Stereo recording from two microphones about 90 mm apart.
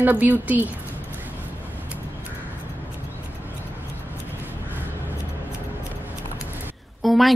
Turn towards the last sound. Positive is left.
turn(degrees=0)  # may be behind; listen again after turning